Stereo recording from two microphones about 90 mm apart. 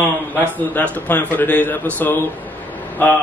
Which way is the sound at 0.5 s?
20° left (ahead or behind).